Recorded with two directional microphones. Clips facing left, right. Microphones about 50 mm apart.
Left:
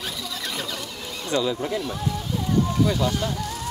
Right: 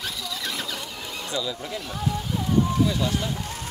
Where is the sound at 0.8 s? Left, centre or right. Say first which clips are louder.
Even; centre.